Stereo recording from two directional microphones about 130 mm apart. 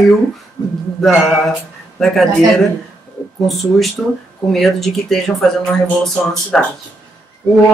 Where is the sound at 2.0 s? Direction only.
Centre (ahead or behind).